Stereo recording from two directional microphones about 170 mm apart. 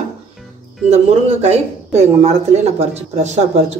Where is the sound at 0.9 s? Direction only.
40° right (ahead or behind).